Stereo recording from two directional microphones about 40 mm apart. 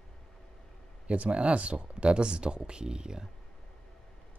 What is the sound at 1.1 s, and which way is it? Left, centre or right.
Speech, right.